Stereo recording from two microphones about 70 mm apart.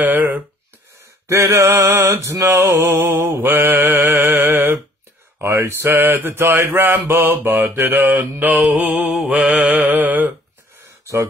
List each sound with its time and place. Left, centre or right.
0.0 s mantra: right
1.2 s mantra: right
3.4 s mantra: right
8.6 s mantra: centre
9.3 s mantra: centre